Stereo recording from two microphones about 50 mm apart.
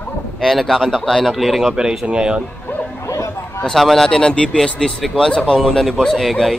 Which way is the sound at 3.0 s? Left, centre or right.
Left.